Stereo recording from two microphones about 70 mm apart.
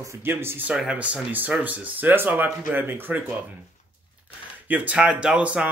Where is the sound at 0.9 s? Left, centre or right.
Centre.